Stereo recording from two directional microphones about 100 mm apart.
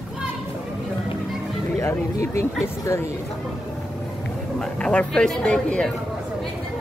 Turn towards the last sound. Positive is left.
turn(degrees=10)  # may be behind; listen again after turning